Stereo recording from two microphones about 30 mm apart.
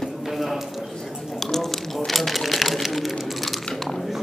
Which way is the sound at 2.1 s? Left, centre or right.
Centre.